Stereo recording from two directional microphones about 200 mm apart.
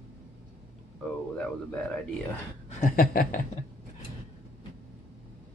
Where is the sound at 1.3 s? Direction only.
5° left (ahead or behind).